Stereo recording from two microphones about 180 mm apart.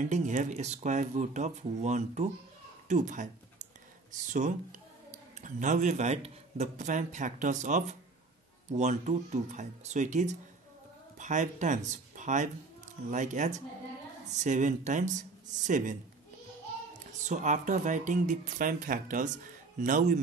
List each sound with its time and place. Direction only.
0.0 s speech: 45° right (ahead or behind)
17.2 s speech: 45° right (ahead or behind)